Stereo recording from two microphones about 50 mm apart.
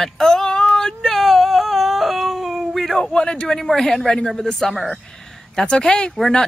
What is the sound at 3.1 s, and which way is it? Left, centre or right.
Speech, centre.